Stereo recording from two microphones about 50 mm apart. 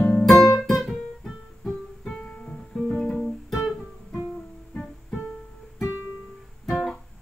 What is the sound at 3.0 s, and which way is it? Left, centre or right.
Guitar, centre.